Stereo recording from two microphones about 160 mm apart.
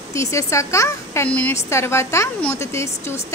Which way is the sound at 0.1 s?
20° left (ahead or behind).